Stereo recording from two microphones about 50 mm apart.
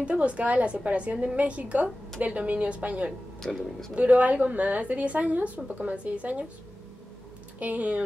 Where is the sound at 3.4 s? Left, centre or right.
Centre.